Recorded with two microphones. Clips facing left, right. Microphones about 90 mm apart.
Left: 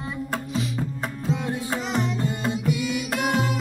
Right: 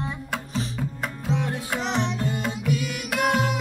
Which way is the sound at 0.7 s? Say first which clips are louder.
Left 1 dB; 35° left (ahead or behind).